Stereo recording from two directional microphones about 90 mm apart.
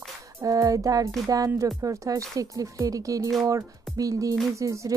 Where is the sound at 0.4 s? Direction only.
40° right (ahead or behind).